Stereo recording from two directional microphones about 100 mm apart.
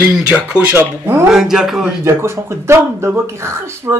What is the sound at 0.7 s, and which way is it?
Speech, 20° right (ahead or behind).